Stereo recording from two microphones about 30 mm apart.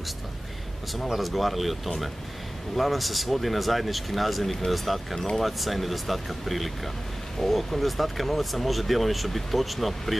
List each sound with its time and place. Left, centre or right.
1.1 s speech: centre